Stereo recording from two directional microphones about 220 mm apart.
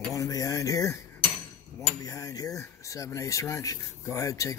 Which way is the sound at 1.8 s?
15° left (ahead or behind).